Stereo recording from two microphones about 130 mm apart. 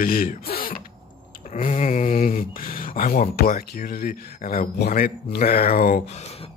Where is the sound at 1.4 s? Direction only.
75° left (ahead or behind); by 4.6 s 90° left.